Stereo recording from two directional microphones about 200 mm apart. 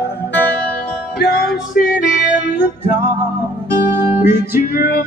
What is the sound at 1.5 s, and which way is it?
Music, 5° right (ahead or behind).